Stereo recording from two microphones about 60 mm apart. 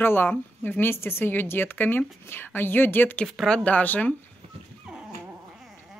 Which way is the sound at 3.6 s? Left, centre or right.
Left.